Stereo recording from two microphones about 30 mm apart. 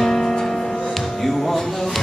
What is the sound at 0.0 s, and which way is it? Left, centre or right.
Music, centre.